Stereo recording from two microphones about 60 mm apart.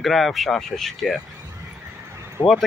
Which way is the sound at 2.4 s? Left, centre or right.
Left.